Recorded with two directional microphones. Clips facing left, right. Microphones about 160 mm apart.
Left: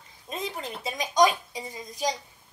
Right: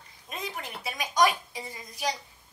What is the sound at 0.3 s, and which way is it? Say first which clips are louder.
A woman's voice: left 4 dB; 25° left (ahead or behind).